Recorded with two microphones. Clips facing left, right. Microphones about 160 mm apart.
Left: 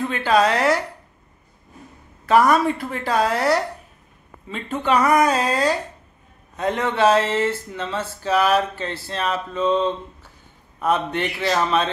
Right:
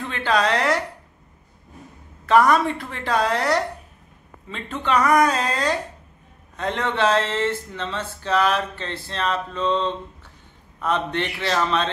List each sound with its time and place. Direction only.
0.0 s a woman's voice: 5° left (ahead or behind)
2.2 s a woman's voice: 5° left (ahead or behind)